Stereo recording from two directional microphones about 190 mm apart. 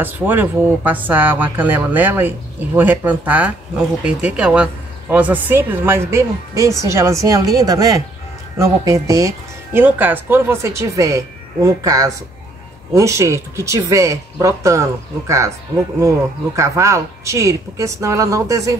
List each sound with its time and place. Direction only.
0.0 s a woman's voice: 10° right (ahead or behind)